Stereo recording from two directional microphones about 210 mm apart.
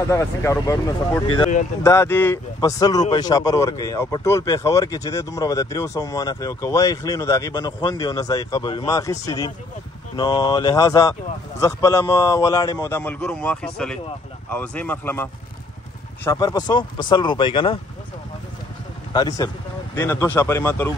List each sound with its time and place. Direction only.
0.1 s a man's voice: 15° left (ahead or behind)
16.3 s speech: 15° left (ahead or behind)
19.1 s a man's voice: 15° left (ahead or behind)